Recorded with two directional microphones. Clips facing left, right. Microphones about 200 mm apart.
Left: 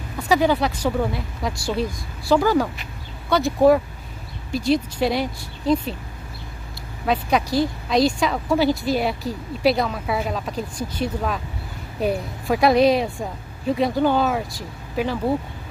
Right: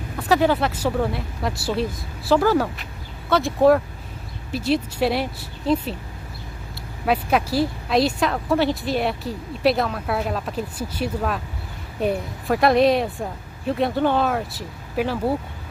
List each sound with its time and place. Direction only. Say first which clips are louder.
0.3 s a woman's voice: even; centre (ahead or behind)
7.1 s a woman's voice: even; 5° right (ahead or behind)